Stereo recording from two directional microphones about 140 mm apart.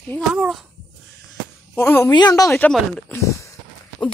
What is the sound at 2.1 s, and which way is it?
Speech, 30° left (ahead or behind).